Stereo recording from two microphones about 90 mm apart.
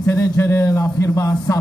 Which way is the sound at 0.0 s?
30° left (ahead or behind).